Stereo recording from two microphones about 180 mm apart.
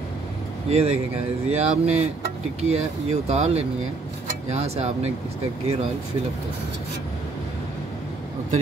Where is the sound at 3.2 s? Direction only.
35° right (ahead or behind).